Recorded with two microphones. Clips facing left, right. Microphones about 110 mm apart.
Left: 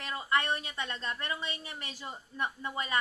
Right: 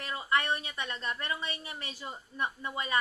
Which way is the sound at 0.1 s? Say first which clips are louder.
Even; 20° right (ahead or behind).